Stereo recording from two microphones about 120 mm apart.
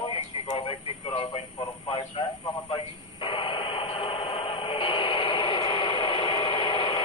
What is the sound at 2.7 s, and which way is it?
Radio, 45° left (ahead or behind).